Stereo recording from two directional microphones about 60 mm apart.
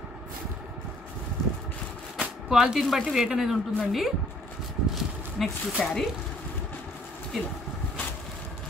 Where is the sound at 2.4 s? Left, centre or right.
Centre.